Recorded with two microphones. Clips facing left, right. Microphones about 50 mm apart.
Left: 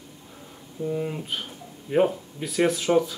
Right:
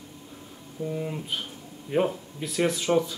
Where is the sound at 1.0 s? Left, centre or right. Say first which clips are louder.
Left 2 dB; centre.